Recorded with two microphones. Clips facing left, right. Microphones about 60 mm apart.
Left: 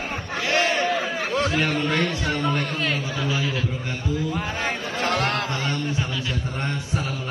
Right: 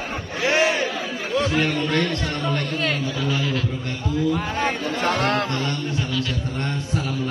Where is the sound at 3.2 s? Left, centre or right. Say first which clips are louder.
Right 1 dB; centre.